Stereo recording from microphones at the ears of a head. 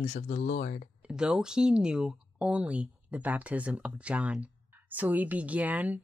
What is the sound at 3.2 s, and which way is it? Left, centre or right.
Speech, centre.